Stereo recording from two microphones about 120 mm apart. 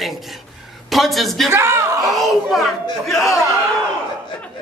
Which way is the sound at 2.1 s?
Centre (ahead or behind).